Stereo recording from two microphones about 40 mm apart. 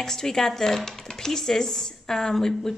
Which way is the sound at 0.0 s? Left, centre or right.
Centre.